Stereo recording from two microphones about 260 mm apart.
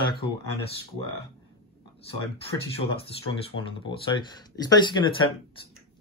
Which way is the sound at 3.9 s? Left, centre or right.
Centre.